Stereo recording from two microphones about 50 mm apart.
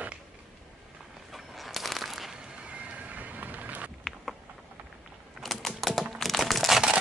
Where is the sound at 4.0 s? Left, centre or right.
Centre.